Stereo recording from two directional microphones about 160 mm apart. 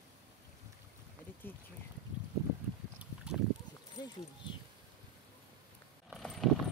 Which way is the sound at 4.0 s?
25° left (ahead or behind).